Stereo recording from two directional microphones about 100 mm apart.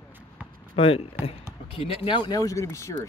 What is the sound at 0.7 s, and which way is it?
Speech, 75° left (ahead or behind).